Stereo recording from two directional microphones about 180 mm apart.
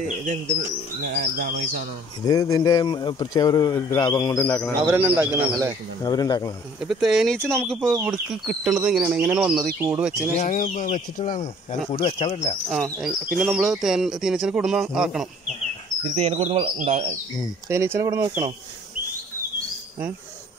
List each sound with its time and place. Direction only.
1.0 s speech: 50° right (ahead or behind)
2.2 s speech: 20° left (ahead or behind)
4.8 s speech: 10° right (ahead or behind)
6.0 s speech: 20° left (ahead or behind)
6.8 s speech: 5° right (ahead or behind)
10.3 s speech: 45° left (ahead or behind)
11.9 s speech: 30° left (ahead or behind)
12.6 s speech: centre (ahead or behind)
16.2 s speech: 35° right (ahead or behind)
17.6 s speech: 15° right (ahead or behind)